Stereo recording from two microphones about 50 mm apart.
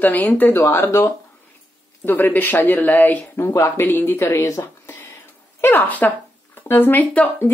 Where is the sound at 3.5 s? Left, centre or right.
Left.